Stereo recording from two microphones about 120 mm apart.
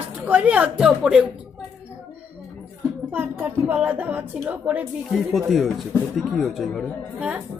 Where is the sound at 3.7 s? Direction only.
15° right (ahead or behind).